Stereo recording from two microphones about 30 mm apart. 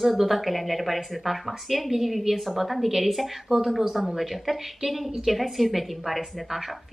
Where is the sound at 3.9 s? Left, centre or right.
Centre.